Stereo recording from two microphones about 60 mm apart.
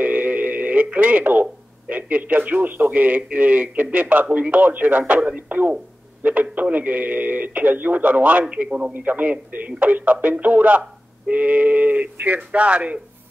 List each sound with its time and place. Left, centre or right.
0.0 s speech: right